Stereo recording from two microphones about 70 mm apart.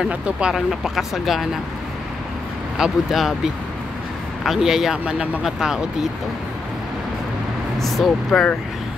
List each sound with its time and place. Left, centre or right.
0.1 s speech: centre
2.8 s speech: centre
4.4 s speech: centre
7.8 s speech: centre
8.3 s speech: centre